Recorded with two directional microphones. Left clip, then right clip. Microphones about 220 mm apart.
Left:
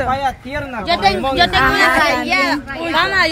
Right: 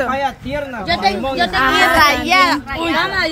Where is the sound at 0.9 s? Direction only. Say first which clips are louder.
Left 2 dB; 30° left (ahead or behind).